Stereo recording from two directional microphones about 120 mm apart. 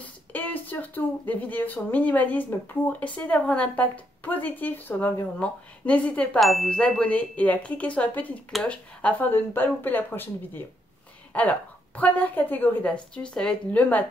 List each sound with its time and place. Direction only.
0.0 s a woman's voice: 15° left (ahead or behind)
6.4 s a woman's voice: centre (ahead or behind)